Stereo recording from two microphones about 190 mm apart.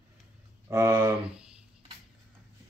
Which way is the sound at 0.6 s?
15° right (ahead or behind).